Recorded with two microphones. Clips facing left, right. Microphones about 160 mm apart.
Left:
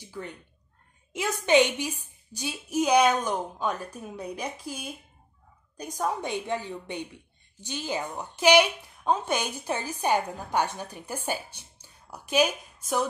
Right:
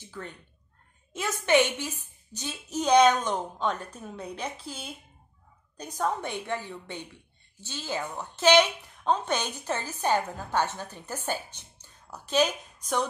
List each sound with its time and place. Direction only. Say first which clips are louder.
0.0 s cat: left 2 dB; 15° left (ahead or behind)
1.1 s a woman's voice: left 2 dB; 15° left (ahead or behind)